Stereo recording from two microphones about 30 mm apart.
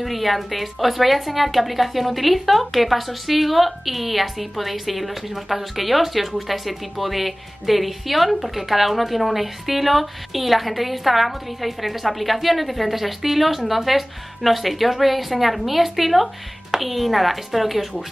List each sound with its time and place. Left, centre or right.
0.0 s a woman's voice: centre